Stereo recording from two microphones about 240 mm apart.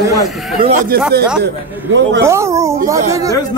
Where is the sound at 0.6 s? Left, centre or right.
Right.